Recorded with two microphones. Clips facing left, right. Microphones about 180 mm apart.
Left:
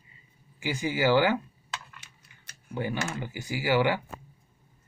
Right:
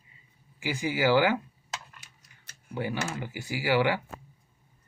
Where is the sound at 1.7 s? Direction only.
40° right (ahead or behind).